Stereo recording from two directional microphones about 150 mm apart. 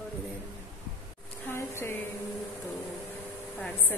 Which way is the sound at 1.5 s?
15° left (ahead or behind).